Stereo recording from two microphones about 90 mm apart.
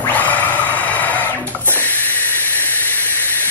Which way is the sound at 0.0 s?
20° left (ahead or behind).